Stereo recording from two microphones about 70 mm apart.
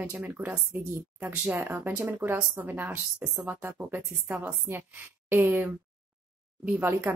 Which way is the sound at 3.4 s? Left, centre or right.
Right.